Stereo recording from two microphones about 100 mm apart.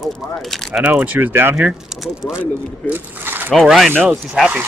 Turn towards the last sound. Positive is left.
turn(degrees=-5)  # may be behind; listen again after turning